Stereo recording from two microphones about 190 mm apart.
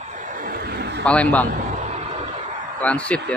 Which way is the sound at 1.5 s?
40° right (ahead or behind).